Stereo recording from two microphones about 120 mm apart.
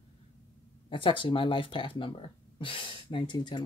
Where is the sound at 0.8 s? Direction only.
45° left (ahead or behind).